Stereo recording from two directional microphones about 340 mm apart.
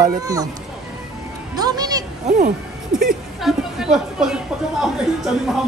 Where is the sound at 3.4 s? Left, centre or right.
Centre.